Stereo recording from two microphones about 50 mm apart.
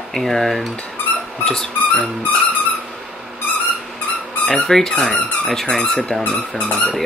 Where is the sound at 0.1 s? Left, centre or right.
Centre.